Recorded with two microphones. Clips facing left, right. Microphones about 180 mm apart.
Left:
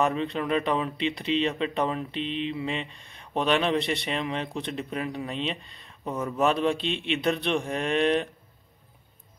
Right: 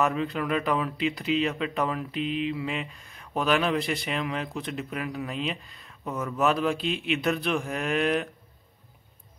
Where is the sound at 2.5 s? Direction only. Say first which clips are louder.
Even; 30° left (ahead or behind).